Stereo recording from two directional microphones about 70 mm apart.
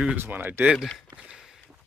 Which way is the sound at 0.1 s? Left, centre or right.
Right.